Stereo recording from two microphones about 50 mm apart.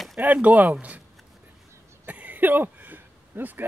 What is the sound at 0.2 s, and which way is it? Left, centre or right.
Speech, right.